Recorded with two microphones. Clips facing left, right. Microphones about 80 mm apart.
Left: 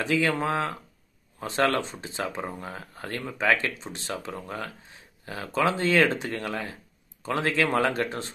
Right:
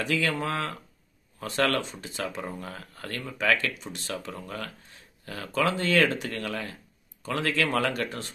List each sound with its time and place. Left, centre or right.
0.0 s speech: left